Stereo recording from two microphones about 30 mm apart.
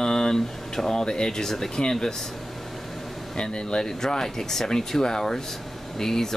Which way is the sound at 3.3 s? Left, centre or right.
Left.